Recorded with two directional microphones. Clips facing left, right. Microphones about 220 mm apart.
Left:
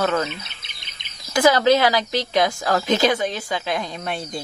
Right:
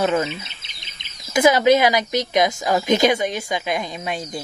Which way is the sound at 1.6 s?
15° right (ahead or behind).